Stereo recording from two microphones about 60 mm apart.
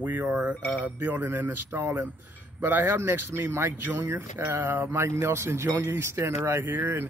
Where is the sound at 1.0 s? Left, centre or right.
Right.